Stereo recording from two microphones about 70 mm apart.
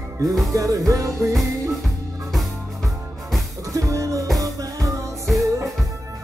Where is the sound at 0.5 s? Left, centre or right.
Right.